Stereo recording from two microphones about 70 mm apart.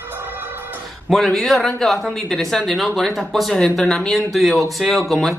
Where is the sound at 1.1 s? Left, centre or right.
Centre.